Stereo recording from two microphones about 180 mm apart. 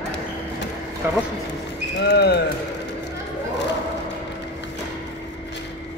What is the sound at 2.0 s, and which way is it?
Speech, 70° left (ahead or behind).